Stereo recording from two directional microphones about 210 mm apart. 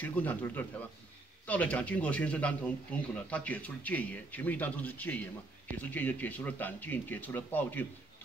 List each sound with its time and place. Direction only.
0.0 s speech: 10° left (ahead or behind)